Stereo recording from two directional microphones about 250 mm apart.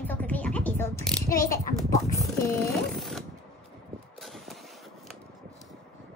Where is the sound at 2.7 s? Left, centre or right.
Centre.